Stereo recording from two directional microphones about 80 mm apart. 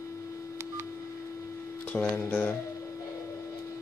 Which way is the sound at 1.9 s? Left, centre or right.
Centre.